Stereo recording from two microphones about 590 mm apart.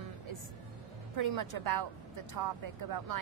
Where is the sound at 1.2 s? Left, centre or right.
Right.